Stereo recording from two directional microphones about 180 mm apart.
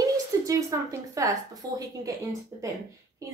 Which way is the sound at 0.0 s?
20° right (ahead or behind).